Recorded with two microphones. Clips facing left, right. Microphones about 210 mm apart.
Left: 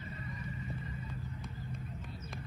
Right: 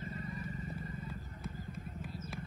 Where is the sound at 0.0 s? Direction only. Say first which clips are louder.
Right 2 dB; 40° right (ahead or behind).